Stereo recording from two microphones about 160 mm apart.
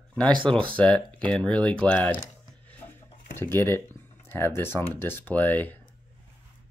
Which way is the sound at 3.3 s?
15° left (ahead or behind).